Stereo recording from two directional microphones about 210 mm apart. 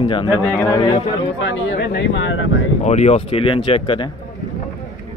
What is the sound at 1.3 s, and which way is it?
Speech, 60° left (ahead or behind).